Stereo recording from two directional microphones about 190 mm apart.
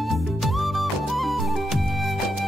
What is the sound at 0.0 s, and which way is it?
Music, centre (ahead or behind).